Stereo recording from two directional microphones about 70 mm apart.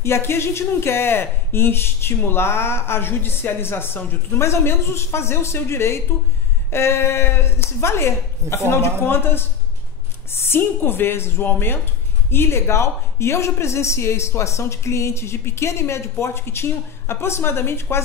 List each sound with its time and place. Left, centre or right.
0.0 s speech: left